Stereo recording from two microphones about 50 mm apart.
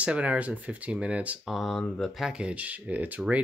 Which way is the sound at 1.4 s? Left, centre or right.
Centre.